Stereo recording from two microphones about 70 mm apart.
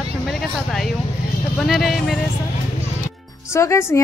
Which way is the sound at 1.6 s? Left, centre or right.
Centre.